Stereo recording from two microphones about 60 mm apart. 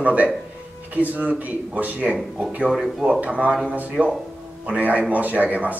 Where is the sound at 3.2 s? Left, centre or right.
Right.